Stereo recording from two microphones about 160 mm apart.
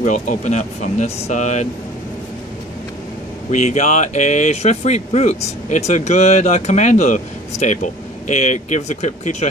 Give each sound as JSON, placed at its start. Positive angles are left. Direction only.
{"t": 0.0, "sound": "speech", "side_deg": 50}
{"t": 3.4, "sound": "speech", "side_deg": 45}